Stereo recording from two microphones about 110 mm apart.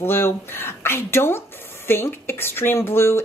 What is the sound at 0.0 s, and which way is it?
Speech, 20° left (ahead or behind).